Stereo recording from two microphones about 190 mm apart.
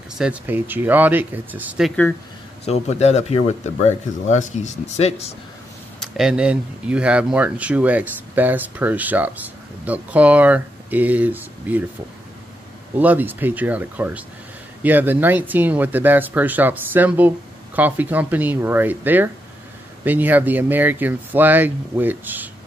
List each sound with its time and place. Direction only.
0.2 s speech: 10° right (ahead or behind)
2.6 s speech: 35° left (ahead or behind)
5.9 s speech: centre (ahead or behind)
12.9 s speech: 10° right (ahead or behind)